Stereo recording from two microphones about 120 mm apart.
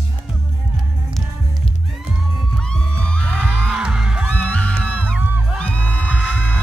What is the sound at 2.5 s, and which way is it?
Music, 5° left (ahead or behind).